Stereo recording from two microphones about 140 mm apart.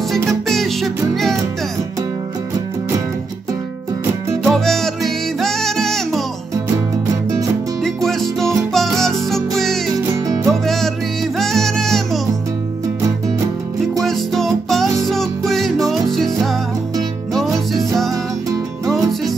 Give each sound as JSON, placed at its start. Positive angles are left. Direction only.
{"t": 0.3, "sound": "music", "side_deg": 0}
{"t": 4.5, "sound": "music", "side_deg": 5}
{"t": 7.8, "sound": "music", "side_deg": 0}
{"t": 10.1, "sound": "music", "side_deg": -25}
{"t": 10.5, "sound": "music", "side_deg": 0}
{"t": 14.0, "sound": "music", "side_deg": 0}